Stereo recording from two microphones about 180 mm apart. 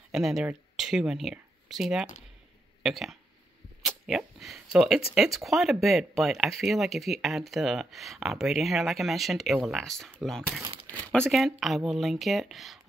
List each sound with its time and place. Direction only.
0.1 s speech: centre (ahead or behind)
10.6 s speech: 25° right (ahead or behind)
11.1 s speech: 5° left (ahead or behind)